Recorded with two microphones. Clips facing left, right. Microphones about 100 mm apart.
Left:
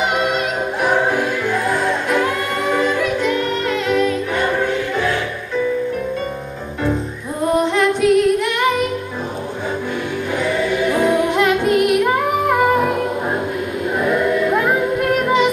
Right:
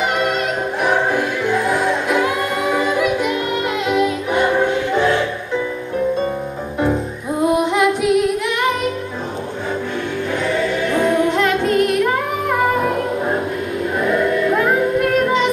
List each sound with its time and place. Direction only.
0.8 s music: centre (ahead or behind); by 5.2 s 25° right (ahead or behind)
7.5 s female singing: 10° right (ahead or behind)
10.4 s choir: 5° left (ahead or behind)
13.9 s choir: centre (ahead or behind)